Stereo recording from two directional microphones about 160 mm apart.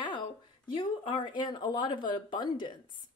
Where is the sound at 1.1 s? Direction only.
30° left (ahead or behind).